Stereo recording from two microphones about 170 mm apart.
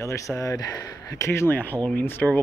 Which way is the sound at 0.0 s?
20° left (ahead or behind).